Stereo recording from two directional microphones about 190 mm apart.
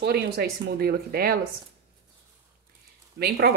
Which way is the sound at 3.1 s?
55° right (ahead or behind).